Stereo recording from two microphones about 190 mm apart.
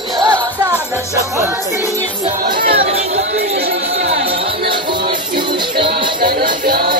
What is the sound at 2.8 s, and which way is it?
Music, 35° right (ahead or behind).